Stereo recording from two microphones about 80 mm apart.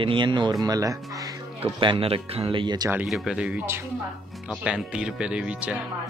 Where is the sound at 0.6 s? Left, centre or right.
Right.